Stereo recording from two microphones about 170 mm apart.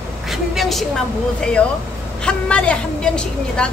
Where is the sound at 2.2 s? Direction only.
5° left (ahead or behind).